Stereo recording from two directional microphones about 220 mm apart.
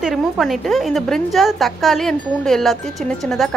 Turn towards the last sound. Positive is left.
turn(degrees=0)  # may be behind; listen again after turning